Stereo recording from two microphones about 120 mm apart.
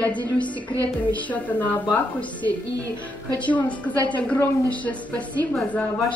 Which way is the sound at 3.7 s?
40° left (ahead or behind).